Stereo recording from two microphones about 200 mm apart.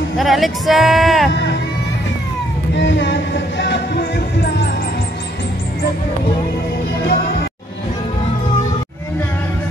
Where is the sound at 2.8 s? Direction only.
60° left (ahead or behind).